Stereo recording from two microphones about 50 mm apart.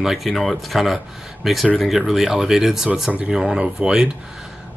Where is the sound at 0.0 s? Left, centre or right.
Centre.